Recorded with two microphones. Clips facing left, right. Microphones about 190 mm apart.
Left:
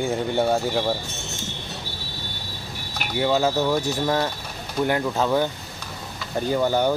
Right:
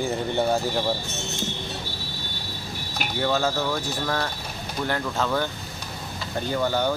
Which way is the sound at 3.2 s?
15° left (ahead or behind).